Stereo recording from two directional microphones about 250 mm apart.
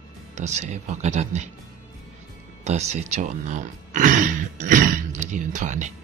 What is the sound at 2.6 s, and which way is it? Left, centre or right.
A man's voice, right.